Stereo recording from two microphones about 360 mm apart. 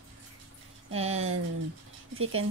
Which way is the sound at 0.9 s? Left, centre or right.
Centre.